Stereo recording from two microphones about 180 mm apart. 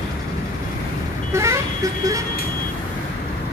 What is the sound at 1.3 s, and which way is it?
Vehicle, 15° right (ahead or behind).